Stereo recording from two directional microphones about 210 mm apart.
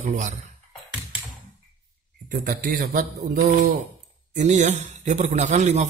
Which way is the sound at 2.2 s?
40° right (ahead or behind).